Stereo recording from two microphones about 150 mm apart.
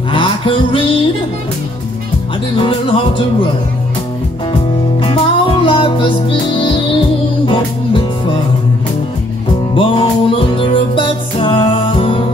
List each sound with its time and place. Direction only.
0.1 s music: 35° left (ahead or behind)
2.5 s music: 35° left (ahead or behind)
5.0 s music: 35° left (ahead or behind)
9.8 s music: 35° left (ahead or behind)